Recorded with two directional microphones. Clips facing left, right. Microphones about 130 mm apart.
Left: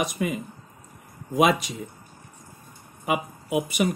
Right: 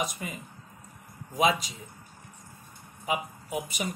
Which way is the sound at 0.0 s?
70° left (ahead or behind).